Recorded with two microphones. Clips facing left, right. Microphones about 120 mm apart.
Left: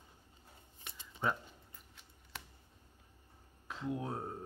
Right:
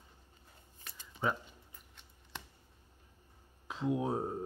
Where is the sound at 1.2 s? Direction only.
5° right (ahead or behind).